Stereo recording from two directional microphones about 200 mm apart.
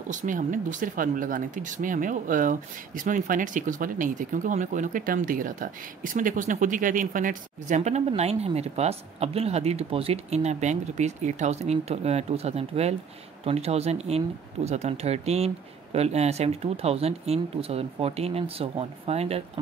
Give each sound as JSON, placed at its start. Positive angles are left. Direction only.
{"t": 0.1, "sound": "speech", "side_deg": -40}